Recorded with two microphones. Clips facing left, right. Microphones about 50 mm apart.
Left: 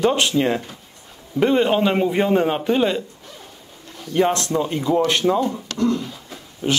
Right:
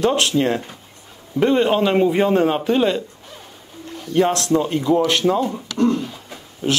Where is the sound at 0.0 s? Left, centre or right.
Centre.